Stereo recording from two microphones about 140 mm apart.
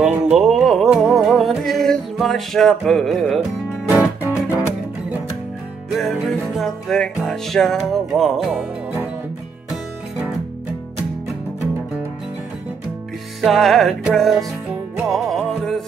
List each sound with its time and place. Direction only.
0.0 s music: 5° right (ahead or behind)
3.9 s music: 10° right (ahead or behind)
5.9 s music: centre (ahead or behind)
13.4 s music: centre (ahead or behind)